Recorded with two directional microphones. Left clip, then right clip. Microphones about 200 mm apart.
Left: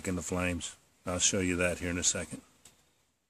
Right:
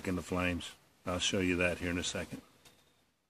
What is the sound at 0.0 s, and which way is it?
Speech, 15° left (ahead or behind).